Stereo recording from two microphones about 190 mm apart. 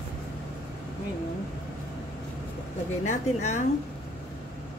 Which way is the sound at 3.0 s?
40° left (ahead or behind).